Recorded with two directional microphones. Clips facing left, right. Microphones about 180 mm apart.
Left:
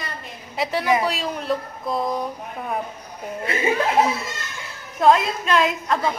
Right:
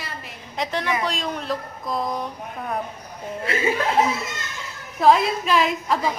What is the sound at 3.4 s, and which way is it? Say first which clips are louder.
Speech: even; 25° left (ahead or behind).